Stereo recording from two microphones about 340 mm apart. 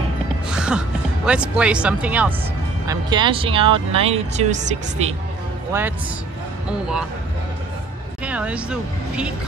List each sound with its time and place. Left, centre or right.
0.6 s speech: centre
5.7 s a man's voice: centre
8.2 s speech: centre